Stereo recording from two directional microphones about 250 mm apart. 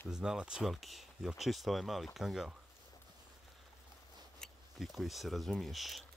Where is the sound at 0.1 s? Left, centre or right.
Centre.